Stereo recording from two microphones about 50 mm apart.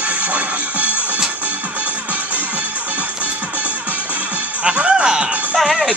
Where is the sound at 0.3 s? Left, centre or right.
Right.